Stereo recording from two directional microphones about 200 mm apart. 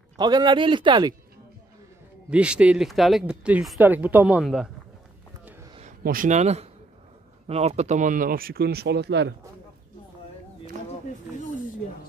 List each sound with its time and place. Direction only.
0.2 s speech: 20° right (ahead or behind)
2.2 s speech: 5° right (ahead or behind)
6.0 s speech: 40° right (ahead or behind); by 9.3 s 55° right (ahead or behind)